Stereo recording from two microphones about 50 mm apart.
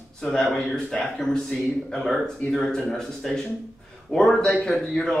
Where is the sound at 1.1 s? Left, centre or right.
Centre.